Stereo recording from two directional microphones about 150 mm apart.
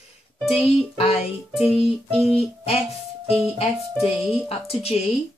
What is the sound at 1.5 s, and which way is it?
Music, centre (ahead or behind).